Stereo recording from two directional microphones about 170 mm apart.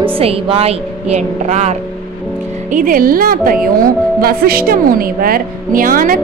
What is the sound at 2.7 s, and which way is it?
A woman's voice, 55° right (ahead or behind).